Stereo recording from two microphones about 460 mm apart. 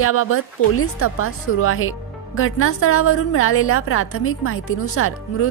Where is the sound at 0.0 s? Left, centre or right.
Left.